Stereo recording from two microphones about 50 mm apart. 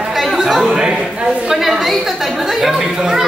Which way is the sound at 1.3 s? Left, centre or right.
Centre.